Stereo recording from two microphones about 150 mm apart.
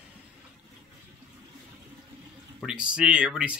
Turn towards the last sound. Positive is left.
turn(degrees=-5)  # may be behind; listen again after turning